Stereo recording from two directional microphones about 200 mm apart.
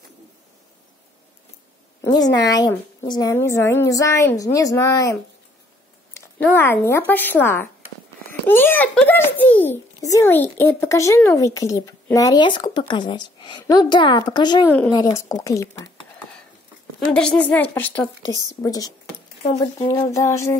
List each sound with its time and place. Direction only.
2.3 s a child's voice: 20° left (ahead or behind)
6.1 s a child's voice: 10° left (ahead or behind)
17.0 s a child's voice: 5° left (ahead or behind)